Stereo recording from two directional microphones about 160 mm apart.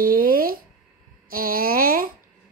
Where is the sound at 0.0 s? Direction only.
65° right (ahead or behind).